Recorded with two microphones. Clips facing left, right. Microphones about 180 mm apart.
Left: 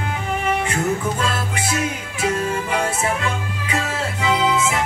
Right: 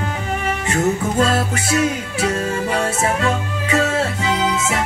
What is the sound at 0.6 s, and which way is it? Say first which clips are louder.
Music: right 3 dB; 40° right (ahead or behind).